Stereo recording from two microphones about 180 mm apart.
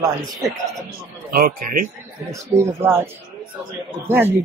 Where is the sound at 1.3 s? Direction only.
55° right (ahead or behind).